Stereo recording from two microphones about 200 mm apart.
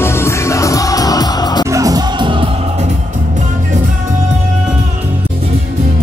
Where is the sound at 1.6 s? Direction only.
15° right (ahead or behind).